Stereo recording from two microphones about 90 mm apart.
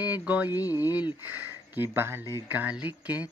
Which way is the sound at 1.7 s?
25° right (ahead or behind).